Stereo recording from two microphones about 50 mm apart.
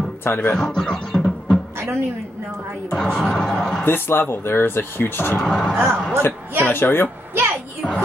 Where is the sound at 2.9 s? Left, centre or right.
Centre.